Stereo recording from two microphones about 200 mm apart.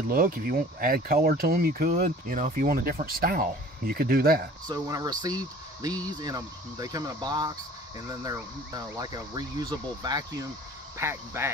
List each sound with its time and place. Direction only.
0.1 s speech: 45° right (ahead or behind)
4.6 s speech: 20° right (ahead or behind)